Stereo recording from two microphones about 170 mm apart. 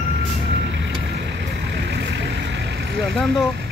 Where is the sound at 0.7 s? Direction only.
90° right.